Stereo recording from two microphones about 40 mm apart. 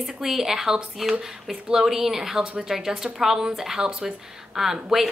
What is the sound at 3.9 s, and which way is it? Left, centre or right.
Speech, right.